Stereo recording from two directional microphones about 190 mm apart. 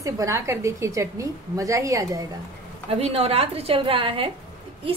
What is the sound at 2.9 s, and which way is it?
A woman's voice, 30° right (ahead or behind).